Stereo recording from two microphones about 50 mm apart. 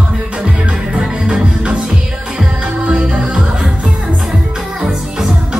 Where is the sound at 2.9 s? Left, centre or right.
Right.